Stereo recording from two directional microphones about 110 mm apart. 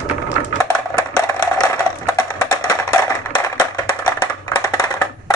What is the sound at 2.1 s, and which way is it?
Music, 30° left (ahead or behind).